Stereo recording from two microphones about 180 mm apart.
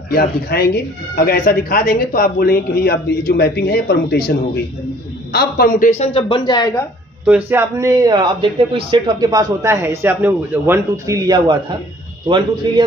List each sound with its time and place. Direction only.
0.1 s speech: 60° left (ahead or behind)
5.3 s speech: 55° left (ahead or behind); by 6.9 s 20° left (ahead or behind)
7.2 s a man's voice: 10° right (ahead or behind)